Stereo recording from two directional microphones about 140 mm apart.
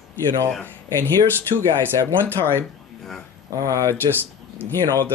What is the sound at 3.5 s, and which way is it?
Speech, 25° right (ahead or behind).